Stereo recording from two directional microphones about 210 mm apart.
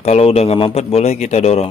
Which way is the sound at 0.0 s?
30° left (ahead or behind).